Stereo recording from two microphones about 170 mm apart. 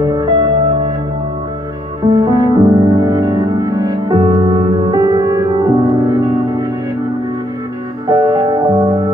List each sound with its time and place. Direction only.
0.0 s music: 20° right (ahead or behind)
2.0 s music: 20° right (ahead or behind)
8.1 s music: 20° right (ahead or behind)